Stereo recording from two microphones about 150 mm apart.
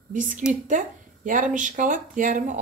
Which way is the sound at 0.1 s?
60° right (ahead or behind).